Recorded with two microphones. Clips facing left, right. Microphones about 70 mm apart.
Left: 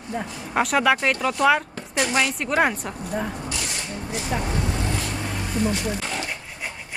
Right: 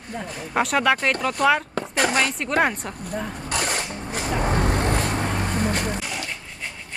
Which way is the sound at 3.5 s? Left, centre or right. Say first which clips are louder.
Right 5 dB; right.